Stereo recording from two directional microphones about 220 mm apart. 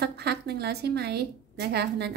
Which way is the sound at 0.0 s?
45° right (ahead or behind).